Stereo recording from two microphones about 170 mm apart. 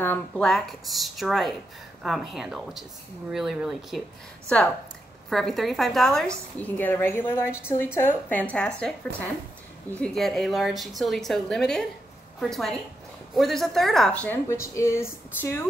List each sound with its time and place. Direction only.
0.0 s a woman's voice: 10° left (ahead or behind)
5.3 s a woman's voice: centre (ahead or behind)
14.2 s speech: 15° left (ahead or behind)